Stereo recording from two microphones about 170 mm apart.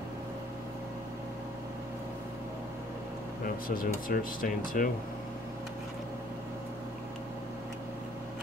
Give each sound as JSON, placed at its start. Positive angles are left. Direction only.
{"t": 3.4, "sound": "speech", "side_deg": 55}